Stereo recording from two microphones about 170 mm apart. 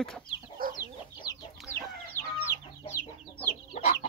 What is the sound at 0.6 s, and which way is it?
Chicken, 55° right (ahead or behind).